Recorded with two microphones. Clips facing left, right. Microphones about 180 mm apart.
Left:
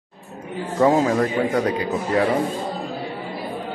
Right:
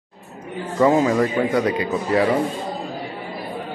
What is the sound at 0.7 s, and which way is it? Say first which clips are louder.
Speech: right 1 dB; centre (ahead or behind).